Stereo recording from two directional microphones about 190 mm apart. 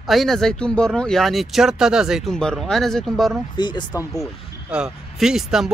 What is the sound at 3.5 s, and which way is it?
Speech, 25° left (ahead or behind).